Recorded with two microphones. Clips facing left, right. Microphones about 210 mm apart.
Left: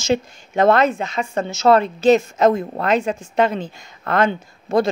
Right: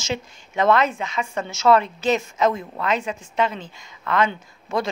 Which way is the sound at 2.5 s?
45° left (ahead or behind).